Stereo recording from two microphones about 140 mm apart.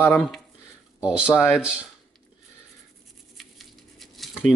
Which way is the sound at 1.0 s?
5° right (ahead or behind).